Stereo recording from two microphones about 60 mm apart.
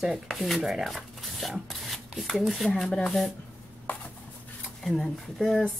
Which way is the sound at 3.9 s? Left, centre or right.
Left.